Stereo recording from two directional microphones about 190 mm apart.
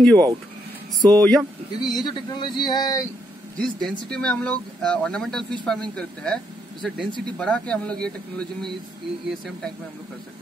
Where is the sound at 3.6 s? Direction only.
5° left (ahead or behind).